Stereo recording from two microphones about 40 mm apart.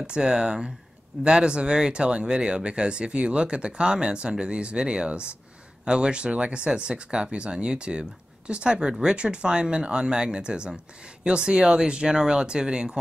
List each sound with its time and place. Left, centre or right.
0.0 s speech: right